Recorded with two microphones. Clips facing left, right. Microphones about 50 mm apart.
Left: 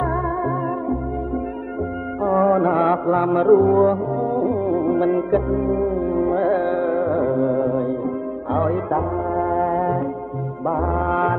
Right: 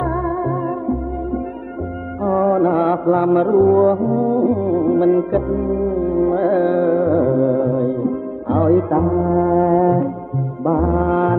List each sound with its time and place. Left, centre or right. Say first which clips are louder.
0.0 s music: right 2 dB; centre
2.2 s music: right 1 dB; centre
6.5 s carnatic music: right 4 dB; centre
7.8 s music: right 4 dB; centre